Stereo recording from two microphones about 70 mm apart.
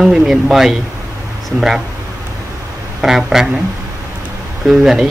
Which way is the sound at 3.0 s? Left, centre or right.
Centre.